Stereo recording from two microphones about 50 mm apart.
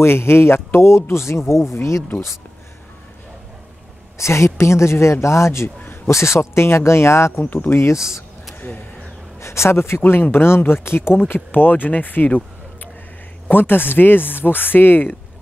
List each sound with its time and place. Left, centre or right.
0.0 s speech: left
4.2 s speech: left
7.4 s speech: left
7.7 s speech: left
9.4 s speech: left
13.5 s speech: left